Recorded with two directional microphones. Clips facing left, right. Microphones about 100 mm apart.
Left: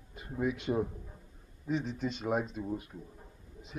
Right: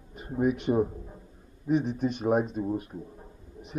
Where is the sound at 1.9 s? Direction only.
55° right (ahead or behind).